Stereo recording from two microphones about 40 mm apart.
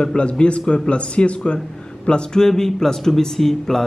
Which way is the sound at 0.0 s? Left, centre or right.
Left.